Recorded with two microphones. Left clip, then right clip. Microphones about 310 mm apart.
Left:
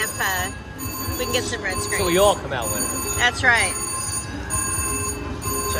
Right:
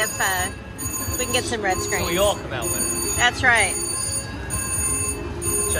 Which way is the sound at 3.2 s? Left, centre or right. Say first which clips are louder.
Even; centre.